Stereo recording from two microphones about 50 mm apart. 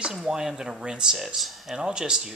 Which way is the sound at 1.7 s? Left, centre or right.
Centre.